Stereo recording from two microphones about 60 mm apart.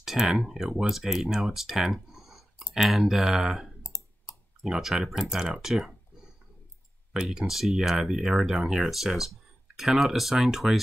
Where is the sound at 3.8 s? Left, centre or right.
Left.